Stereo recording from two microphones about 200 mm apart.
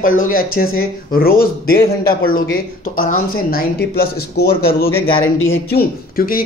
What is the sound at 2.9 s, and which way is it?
Speech, 45° left (ahead or behind).